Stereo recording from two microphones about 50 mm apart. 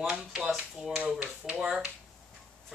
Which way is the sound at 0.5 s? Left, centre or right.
Centre.